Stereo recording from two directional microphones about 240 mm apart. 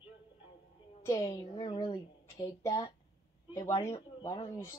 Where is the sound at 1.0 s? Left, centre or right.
Centre.